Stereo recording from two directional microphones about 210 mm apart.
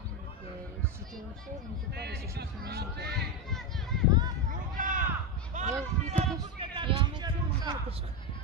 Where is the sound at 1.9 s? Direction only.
50° right (ahead or behind).